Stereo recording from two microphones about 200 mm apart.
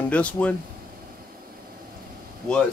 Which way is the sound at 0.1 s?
5° left (ahead or behind).